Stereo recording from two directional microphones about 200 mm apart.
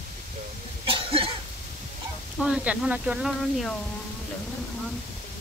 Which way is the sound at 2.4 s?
5° right (ahead or behind).